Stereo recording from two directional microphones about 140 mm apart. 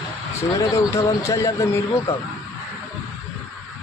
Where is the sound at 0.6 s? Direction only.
25° left (ahead or behind).